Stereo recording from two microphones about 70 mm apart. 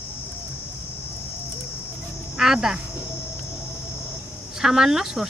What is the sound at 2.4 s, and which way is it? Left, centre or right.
Speech, centre.